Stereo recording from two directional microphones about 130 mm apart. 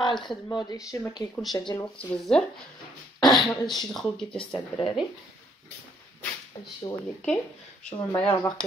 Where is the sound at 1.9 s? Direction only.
5° left (ahead or behind).